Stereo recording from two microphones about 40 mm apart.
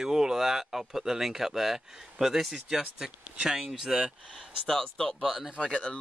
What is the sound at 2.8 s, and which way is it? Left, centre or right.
Speech, centre.